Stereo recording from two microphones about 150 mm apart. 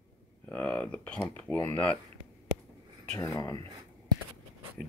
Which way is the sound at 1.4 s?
10° left (ahead or behind).